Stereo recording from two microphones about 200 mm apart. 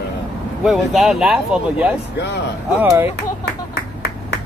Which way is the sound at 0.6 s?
Centre (ahead or behind).